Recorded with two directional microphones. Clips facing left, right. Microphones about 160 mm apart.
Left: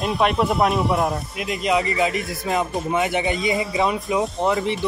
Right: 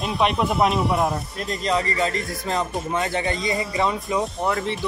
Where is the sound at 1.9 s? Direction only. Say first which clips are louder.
Left 2 dB; 20° left (ahead or behind).